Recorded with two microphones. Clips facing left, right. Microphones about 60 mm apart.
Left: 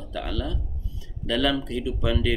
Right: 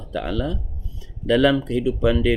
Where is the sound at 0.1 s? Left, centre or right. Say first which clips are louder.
Right 6 dB; right.